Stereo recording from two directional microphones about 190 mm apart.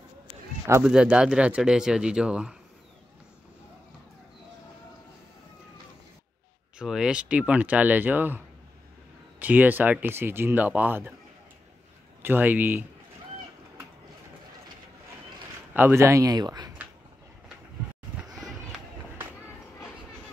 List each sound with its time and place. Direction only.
0.7 s speech: 10° right (ahead or behind)
6.8 s speech: 5° right (ahead or behind)
9.4 s speech: 10° right (ahead or behind)
12.2 s speech: 10° right (ahead or behind)
15.7 s speech: 10° right (ahead or behind)
18.3 s run: centre (ahead or behind)